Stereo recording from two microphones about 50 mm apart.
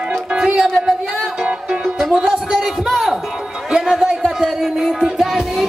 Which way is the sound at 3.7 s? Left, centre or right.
Centre.